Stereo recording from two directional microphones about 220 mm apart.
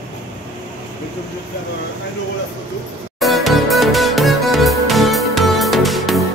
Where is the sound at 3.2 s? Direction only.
Centre (ahead or behind).